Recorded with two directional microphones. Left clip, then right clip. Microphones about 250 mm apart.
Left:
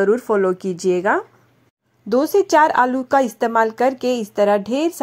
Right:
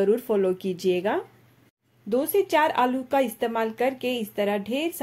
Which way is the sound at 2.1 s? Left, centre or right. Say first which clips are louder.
Left 7 dB; left.